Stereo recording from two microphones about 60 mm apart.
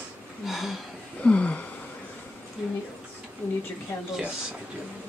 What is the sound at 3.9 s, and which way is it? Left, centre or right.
Speech, left.